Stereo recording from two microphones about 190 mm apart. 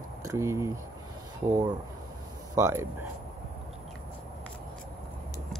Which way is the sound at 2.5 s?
15° right (ahead or behind).